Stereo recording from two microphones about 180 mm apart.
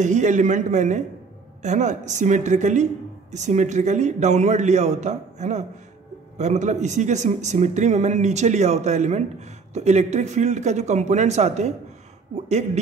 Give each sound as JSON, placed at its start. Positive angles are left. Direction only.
{"t": 0.0, "sound": "speech", "side_deg": -40}